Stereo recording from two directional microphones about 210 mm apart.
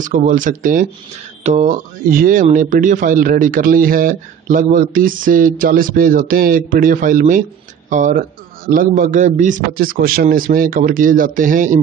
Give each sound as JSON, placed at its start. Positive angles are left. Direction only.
{"t": 0.0, "sound": "speech", "side_deg": -40}